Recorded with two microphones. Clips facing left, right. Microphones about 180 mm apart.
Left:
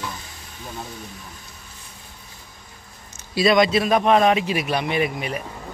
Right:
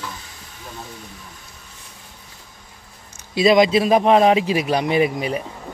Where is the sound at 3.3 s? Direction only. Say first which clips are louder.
Right 3 dB; 25° right (ahead or behind).